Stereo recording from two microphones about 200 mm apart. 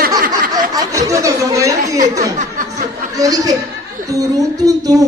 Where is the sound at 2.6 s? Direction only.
40° right (ahead or behind).